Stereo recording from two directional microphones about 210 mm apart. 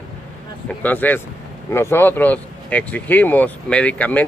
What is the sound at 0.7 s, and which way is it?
Speech, 10° left (ahead or behind).